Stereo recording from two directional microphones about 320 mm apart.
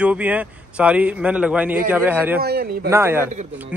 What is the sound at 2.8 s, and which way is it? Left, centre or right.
Speech, centre.